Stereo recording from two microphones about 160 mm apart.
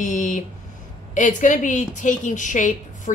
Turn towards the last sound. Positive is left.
turn(degrees=50)  # may be behind; listen again after turning